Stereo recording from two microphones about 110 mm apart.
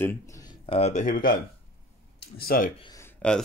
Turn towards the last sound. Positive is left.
turn(degrees=10)  # may be behind; listen again after turning